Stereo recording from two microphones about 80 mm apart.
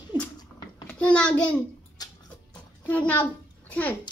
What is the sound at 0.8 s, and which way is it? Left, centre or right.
Speech, centre.